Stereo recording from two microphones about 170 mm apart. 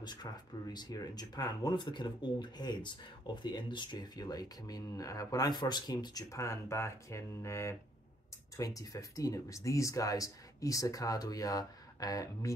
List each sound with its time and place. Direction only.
0.0 s speech: 25° left (ahead or behind)